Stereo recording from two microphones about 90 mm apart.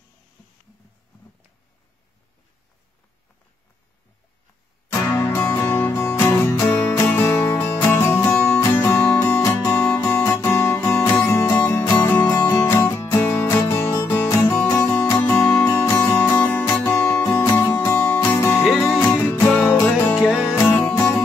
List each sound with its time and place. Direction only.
4.9 s music: 25° left (ahead or behind)
11.2 s music: 35° left (ahead or behind)
11.9 s music: 15° left (ahead or behind)
12.4 s music: 30° left (ahead or behind)
20.2 s music: 10° right (ahead or behind)
20.5 s music: 25° left (ahead or behind)
20.9 s music: 35° left (ahead or behind)